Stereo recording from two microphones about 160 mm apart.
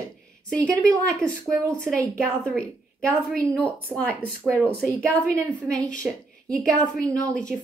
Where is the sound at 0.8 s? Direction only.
5° left (ahead or behind).